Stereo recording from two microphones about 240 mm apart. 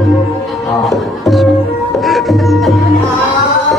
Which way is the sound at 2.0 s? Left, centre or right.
Centre.